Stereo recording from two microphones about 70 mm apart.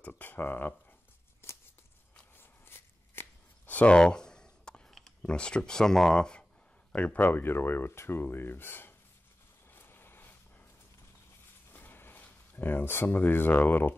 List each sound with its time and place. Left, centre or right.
0.0 s speech: left
1.4 s a sound: left
2.3 s shuffling cards: left; by 4.8 s centre
5.2 s speech: centre
7.2 s speech: left
9.7 s vehicle: left
11.7 s a sound: left